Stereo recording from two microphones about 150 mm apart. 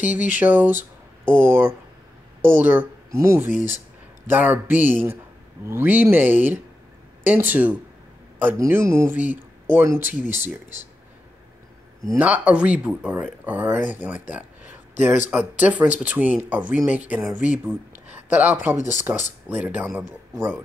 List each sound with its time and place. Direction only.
0.0 s a sound: 60° left (ahead or behind)
0.3 s speech: 10° right (ahead or behind)
12.1 s speech: 10° right (ahead or behind)
17.2 s speech: centre (ahead or behind)
17.5 s speech: 10° right (ahead or behind)